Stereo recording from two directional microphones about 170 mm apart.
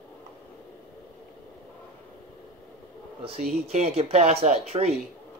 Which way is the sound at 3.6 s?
40° right (ahead or behind).